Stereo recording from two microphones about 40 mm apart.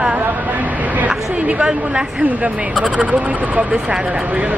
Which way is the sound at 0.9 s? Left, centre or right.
Right.